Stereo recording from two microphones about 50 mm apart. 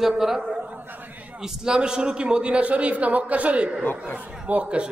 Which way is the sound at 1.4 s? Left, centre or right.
Centre.